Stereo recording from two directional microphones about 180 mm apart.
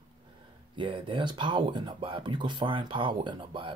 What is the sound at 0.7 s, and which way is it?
Speech, 25° right (ahead or behind).